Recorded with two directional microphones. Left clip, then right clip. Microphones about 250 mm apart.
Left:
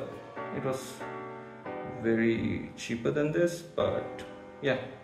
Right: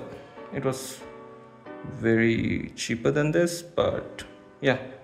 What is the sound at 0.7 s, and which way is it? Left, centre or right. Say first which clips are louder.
Speech: right 5 dB; right.